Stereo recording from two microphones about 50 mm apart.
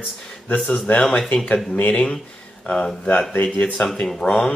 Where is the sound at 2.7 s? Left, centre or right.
Left; by 4.5 s centre.